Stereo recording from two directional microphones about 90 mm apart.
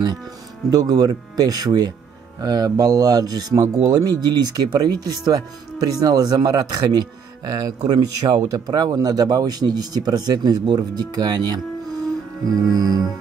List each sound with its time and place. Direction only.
0.7 s speech: 45° right (ahead or behind)